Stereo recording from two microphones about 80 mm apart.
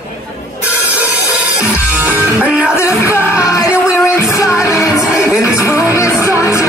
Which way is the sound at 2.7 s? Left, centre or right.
Left.